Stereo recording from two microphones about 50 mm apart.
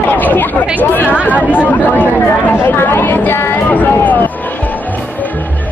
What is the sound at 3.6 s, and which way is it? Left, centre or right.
Music, left.